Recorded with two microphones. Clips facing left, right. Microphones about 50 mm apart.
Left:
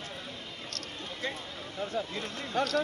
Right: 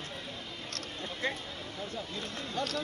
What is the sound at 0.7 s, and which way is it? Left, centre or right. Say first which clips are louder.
Speech: right 1 dB; right.